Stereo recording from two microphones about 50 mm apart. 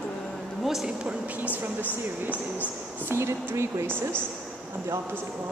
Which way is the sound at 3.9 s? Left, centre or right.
Left.